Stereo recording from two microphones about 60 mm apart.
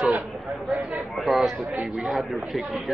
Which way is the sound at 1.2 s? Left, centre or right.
Centre.